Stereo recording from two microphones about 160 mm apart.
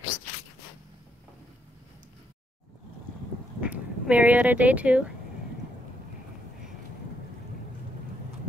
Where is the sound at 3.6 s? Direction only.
10° right (ahead or behind).